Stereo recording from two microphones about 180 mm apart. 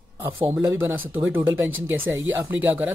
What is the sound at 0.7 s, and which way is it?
Speech, 15° right (ahead or behind).